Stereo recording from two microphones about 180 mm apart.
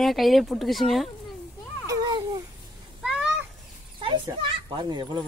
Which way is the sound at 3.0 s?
5° right (ahead or behind).